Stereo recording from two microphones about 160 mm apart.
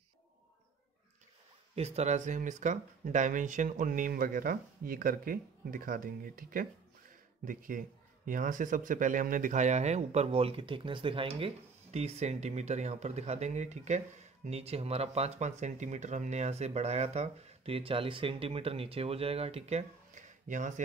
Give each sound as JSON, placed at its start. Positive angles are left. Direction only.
{"t": 1.8, "sound": "speech", "side_deg": -40}